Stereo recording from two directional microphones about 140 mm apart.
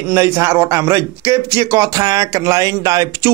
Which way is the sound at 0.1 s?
20° right (ahead or behind).